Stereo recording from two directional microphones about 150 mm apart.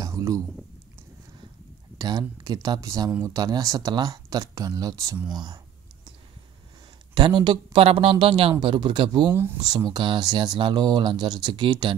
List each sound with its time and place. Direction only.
0.0 s a sound: 20° right (ahead or behind)
2.0 s speech: 25° right (ahead or behind)
7.2 s speech: 30° right (ahead or behind)
9.3 s speech: 15° right (ahead or behind)
9.6 s speech: 25° right (ahead or behind)